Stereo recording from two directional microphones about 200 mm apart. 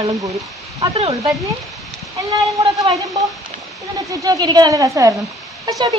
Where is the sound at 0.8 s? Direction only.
30° right (ahead or behind).